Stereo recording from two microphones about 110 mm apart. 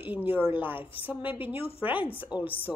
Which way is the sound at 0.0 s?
15° right (ahead or behind).